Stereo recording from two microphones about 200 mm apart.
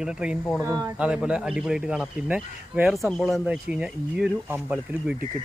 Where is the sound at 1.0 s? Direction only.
5° right (ahead or behind).